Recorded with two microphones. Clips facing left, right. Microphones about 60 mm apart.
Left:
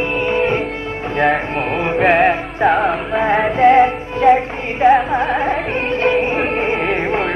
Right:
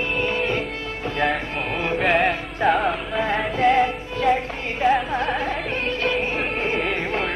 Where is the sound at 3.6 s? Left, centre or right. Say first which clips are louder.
Left 7 dB; left.